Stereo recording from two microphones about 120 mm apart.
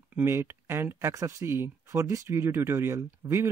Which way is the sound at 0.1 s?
20° right (ahead or behind).